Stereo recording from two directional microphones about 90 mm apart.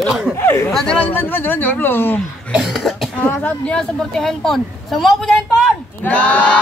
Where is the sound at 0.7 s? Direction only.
5° left (ahead or behind).